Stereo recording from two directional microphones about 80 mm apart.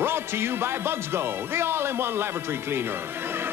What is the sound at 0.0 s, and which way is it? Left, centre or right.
Speech, right.